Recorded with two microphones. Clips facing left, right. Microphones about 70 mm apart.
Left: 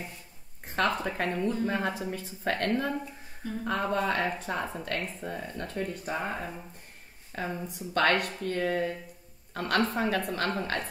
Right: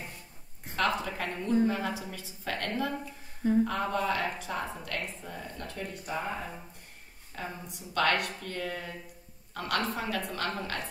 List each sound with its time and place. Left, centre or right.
0.7 s a woman's voice: left
7.3 s a woman's voice: left